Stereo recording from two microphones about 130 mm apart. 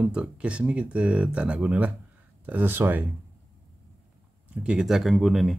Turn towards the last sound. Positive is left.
turn(degrees=0)  # may be behind; listen again after turning